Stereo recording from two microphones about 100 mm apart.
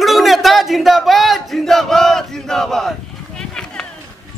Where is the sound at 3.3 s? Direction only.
5° left (ahead or behind).